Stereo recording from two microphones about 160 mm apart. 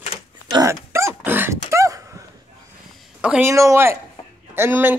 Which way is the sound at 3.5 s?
20° right (ahead or behind).